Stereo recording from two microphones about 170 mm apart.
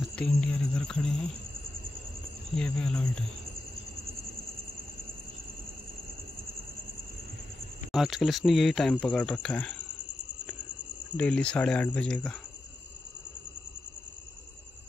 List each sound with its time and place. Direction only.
0.0 s speech: 5° left (ahead or behind)
2.5 s speech: 5° left (ahead or behind)
7.9 s speech: centre (ahead or behind)
11.1 s speech: 5° left (ahead or behind)